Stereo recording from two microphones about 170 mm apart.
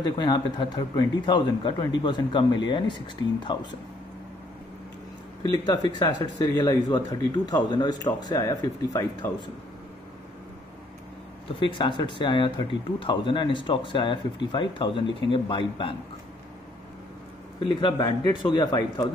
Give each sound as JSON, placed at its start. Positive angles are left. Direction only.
{"t": 0.0, "sound": "speech", "side_deg": 25}
{"t": 5.5, "sound": "speech", "side_deg": 25}
{"t": 11.6, "sound": "speech", "side_deg": 30}
{"t": 17.6, "sound": "speech", "side_deg": 30}